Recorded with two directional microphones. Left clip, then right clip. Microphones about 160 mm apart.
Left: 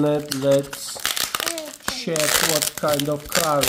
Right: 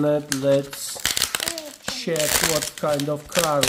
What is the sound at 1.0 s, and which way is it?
Crumpling, 30° left (ahead or behind).